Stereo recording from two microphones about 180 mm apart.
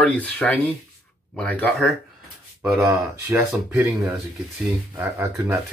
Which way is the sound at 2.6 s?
15° right (ahead or behind).